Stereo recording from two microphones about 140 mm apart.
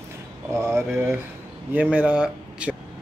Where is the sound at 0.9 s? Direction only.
15° right (ahead or behind).